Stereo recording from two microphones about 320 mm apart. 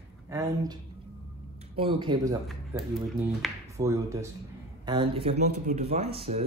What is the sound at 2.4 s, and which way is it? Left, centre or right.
Speech, centre.